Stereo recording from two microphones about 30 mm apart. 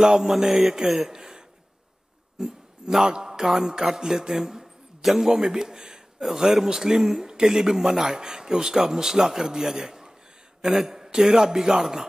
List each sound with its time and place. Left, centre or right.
0.0 s a man's voice: centre
3.4 s a man's voice: centre